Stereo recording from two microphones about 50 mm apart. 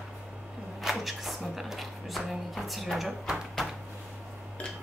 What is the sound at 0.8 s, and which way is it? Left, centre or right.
A woman's voice, centre.